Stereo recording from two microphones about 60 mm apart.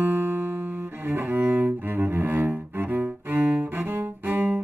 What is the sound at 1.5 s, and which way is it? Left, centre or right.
Cello, right.